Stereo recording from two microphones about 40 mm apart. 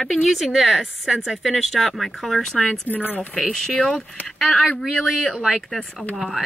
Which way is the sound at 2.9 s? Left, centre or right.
Left.